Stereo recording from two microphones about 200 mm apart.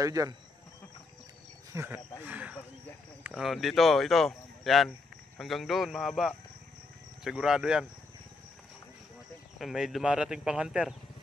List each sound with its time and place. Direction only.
0.0 s speech: 15° right (ahead or behind)
1.7 s speech: 10° right (ahead or behind)
9.6 s speech: centre (ahead or behind)